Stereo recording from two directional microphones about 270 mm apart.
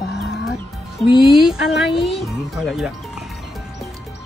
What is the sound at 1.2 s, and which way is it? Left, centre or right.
Speech, centre.